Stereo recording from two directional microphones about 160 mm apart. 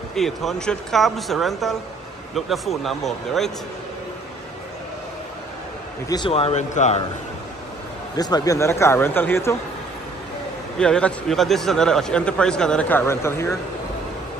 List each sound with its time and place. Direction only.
0.1 s a man's voice: centre (ahead or behind)
6.0 s a man's voice: 25° left (ahead or behind)
6.3 s a man's voice: 40° left (ahead or behind)
8.2 s speech: 25° left (ahead or behind)
10.8 s a man's voice: 5° left (ahead or behind)